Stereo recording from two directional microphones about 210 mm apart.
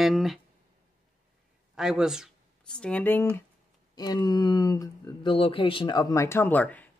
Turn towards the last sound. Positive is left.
turn(degrees=10)  # may be behind; listen again after turning